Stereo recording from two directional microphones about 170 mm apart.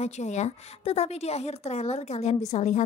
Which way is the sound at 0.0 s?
45° left (ahead or behind).